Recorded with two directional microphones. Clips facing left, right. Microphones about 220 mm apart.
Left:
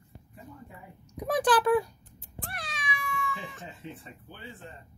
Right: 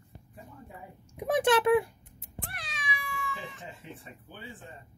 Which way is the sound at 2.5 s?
45° left (ahead or behind).